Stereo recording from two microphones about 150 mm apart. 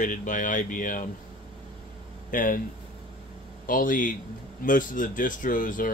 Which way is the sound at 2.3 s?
65° left (ahead or behind).